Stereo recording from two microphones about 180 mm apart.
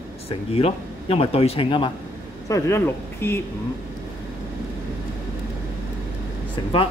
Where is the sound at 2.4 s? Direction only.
15° left (ahead or behind).